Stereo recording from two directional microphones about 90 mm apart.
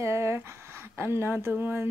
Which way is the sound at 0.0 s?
30° right (ahead or behind).